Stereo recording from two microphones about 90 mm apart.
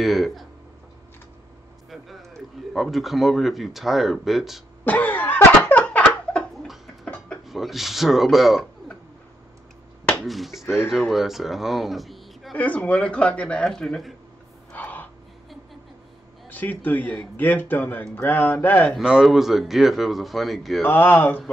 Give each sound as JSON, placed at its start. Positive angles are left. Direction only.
{"t": 0.0, "sound": "speech", "side_deg": 0}
{"t": 1.9, "sound": "speech", "side_deg": 0}
{"t": 4.8, "sound": "laughter", "side_deg": 20}
{"t": 7.4, "sound": "speech", "side_deg": 0}
{"t": 10.2, "sound": "speech", "side_deg": 0}
{"t": 12.5, "sound": "a man's voice", "side_deg": 15}
{"t": 14.7, "sound": "gasp", "side_deg": 20}
{"t": 16.4, "sound": "a man's voice", "side_deg": 20}
{"t": 18.9, "sound": "speech", "side_deg": -5}
{"t": 20.8, "sound": "a man's voice", "side_deg": 20}